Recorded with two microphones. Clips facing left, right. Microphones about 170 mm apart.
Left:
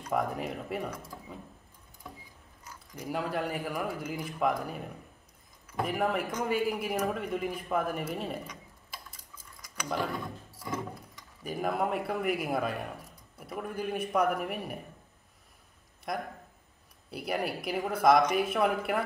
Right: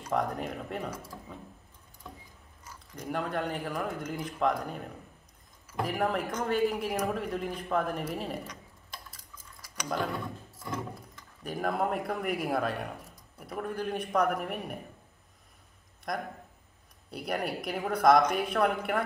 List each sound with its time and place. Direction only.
0.1 s speech: 5° left (ahead or behind)
2.0 s vehicle: 5° left (ahead or behind)
3.0 s speech: 5° left (ahead or behind)
11.4 s speech: 5° left (ahead or behind)
16.1 s speech: 5° left (ahead or behind)